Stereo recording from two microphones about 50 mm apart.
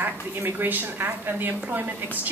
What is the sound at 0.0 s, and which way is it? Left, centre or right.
A woman's voice, right.